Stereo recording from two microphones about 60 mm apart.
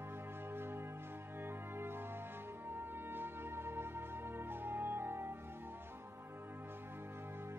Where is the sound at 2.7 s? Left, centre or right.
Right.